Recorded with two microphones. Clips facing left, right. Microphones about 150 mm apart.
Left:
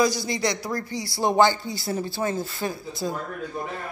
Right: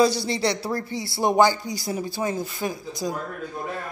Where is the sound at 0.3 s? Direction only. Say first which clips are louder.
Right 2 dB; 30° right (ahead or behind).